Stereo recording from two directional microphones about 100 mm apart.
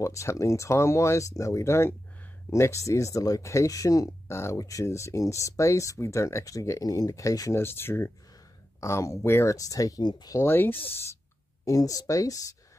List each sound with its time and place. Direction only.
0.0 s speech: 30° left (ahead or behind)
7.6 s speech: 25° left (ahead or behind); by 10.4 s 40° left (ahead or behind)
10.4 s speech: 20° left (ahead or behind)
11.6 s speech: 35° left (ahead or behind)